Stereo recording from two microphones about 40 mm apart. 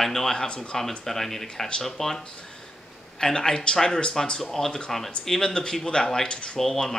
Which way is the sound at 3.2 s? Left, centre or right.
Centre.